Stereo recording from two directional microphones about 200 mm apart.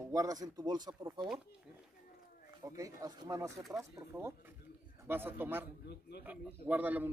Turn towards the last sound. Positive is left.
turn(degrees=-10)  # may be behind; listen again after turning